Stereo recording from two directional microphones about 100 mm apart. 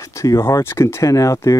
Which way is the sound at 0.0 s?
35° left (ahead or behind).